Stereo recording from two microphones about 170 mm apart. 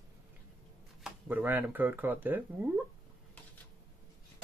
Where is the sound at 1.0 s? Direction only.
10° right (ahead or behind).